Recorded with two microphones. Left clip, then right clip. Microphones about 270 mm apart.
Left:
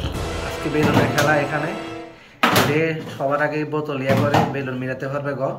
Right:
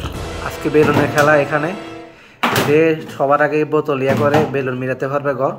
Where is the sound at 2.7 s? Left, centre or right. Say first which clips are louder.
Right 8 dB; centre.